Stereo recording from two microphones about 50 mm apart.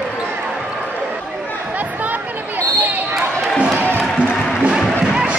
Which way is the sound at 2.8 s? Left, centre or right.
Right.